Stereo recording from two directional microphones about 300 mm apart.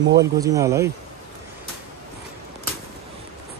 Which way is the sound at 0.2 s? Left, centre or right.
Centre.